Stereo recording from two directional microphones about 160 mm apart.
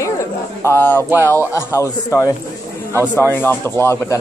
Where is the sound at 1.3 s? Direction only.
20° left (ahead or behind).